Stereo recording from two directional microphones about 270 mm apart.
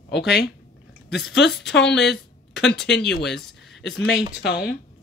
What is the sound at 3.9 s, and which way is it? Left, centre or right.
Speech, left.